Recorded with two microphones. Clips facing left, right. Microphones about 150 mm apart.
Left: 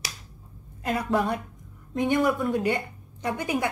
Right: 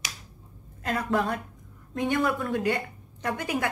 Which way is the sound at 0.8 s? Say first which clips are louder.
Left 1 dB; 10° left (ahead or behind).